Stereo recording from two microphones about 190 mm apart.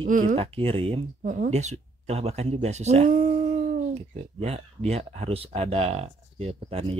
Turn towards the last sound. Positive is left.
turn(degrees=-30)  # may be behind; listen again after turning